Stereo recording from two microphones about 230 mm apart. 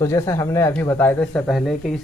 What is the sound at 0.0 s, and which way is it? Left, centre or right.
A man's voice, centre.